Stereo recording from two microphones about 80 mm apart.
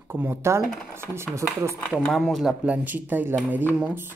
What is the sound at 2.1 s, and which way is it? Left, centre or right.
Speech, centre.